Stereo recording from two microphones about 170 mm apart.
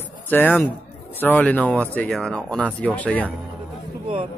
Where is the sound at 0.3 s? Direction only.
10° left (ahead or behind).